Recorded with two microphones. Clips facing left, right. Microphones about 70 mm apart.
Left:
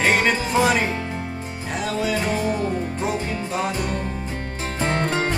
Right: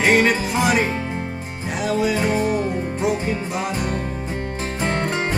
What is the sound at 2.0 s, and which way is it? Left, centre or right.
Music, centre.